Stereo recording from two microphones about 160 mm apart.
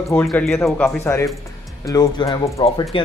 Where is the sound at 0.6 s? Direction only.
15° left (ahead or behind).